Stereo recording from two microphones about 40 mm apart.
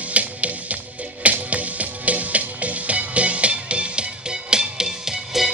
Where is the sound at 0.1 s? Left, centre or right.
Right.